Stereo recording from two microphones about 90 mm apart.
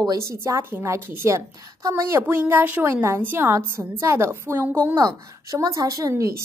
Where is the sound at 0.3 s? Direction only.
30° right (ahead or behind).